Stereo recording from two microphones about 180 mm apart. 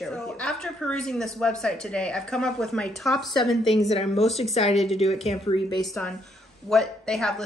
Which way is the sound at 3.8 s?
35° left (ahead or behind).